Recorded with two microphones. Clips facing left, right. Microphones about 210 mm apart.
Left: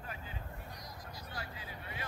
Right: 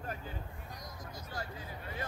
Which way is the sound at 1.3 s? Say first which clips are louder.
Right 4 dB; 45° right (ahead or behind).